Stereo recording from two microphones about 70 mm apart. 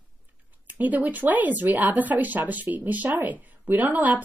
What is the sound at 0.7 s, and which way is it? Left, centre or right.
A woman's voice, right.